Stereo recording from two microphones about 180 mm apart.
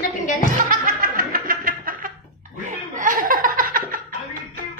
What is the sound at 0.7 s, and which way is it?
Music, 50° right (ahead or behind).